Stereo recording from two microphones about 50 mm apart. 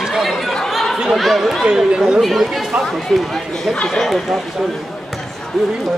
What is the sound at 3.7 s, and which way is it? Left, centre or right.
Speech, centre.